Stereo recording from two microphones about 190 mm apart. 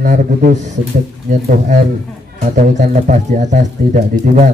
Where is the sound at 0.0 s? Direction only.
45° right (ahead or behind).